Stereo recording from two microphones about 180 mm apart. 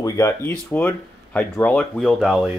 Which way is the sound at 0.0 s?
15° left (ahead or behind).